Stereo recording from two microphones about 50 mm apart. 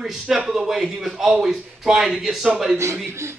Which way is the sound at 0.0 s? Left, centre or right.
Centre.